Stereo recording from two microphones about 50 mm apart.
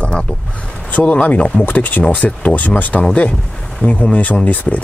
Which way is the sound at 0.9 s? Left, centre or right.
Left.